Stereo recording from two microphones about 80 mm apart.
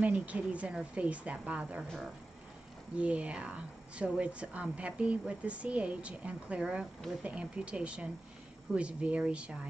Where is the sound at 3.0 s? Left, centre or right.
Centre.